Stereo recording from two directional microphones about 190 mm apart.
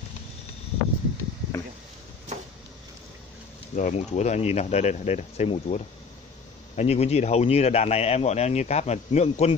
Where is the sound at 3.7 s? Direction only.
40° left (ahead or behind).